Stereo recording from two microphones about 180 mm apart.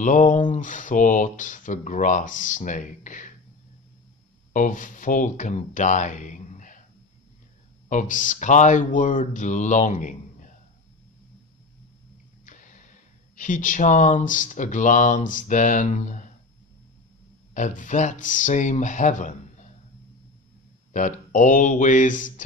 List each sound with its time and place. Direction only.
0.0 s speech: 45° left (ahead or behind)
4.6 s speech: 45° left (ahead or behind)
7.9 s speech: 45° left (ahead or behind)
12.4 s a sound: 45° left (ahead or behind)
13.4 s speech: 45° left (ahead or behind)
17.6 s speech: 45° left (ahead or behind)
20.9 s speech: 45° left (ahead or behind)